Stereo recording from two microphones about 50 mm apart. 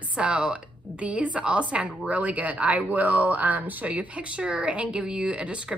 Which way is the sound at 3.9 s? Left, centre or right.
Right.